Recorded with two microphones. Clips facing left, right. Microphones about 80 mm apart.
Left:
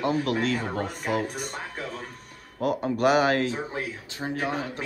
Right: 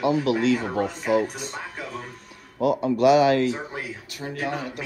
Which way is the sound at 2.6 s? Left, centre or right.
Left.